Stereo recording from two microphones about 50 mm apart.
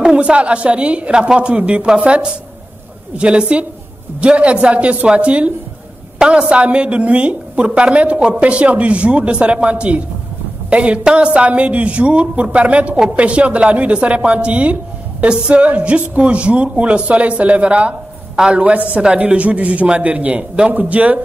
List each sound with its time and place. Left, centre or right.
0.0 s a woman's voice: centre
18.3 s a woman's voice: centre
18.6 s a woman's voice: right